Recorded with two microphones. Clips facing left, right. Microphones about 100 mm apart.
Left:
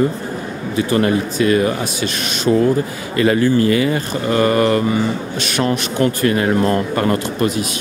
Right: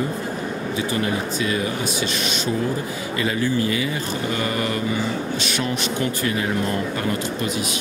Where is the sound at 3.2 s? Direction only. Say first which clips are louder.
Left 9 dB; 60° left (ahead or behind).